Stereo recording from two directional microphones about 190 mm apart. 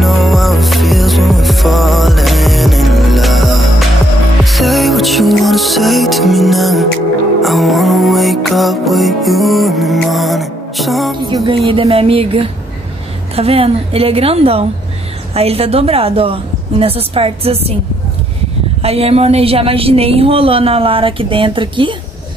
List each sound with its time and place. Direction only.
0.0 s music: centre (ahead or behind)
11.2 s a sound: 25° right (ahead or behind)
13.4 s a woman's voice: 30° right (ahead or behind)
18.8 s speech: 30° right (ahead or behind)